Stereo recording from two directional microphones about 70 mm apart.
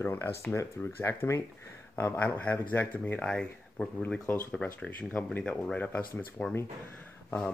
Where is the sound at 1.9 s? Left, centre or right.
Left.